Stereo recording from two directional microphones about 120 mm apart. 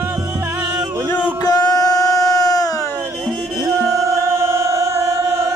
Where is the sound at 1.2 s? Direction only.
35° left (ahead or behind).